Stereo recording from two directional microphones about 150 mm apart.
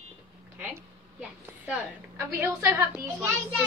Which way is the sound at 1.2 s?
5° right (ahead or behind).